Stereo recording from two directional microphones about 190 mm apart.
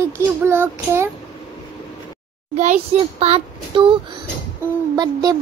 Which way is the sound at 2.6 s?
35° right (ahead or behind).